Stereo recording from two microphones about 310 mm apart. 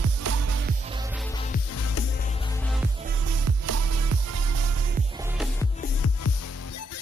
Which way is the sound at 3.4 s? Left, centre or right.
Right.